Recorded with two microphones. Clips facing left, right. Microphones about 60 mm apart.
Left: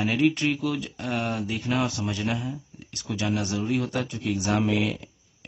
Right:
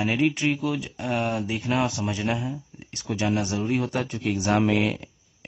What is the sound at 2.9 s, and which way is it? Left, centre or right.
Speech, right.